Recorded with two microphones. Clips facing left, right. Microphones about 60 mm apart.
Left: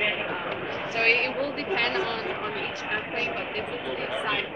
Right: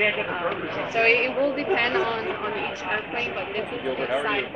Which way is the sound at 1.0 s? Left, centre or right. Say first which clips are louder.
Right 4 dB; centre.